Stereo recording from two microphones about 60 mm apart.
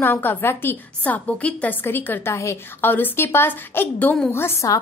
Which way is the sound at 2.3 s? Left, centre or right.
Left.